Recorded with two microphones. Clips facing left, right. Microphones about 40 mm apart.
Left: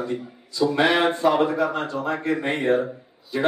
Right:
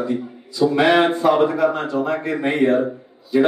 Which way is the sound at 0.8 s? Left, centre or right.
Centre.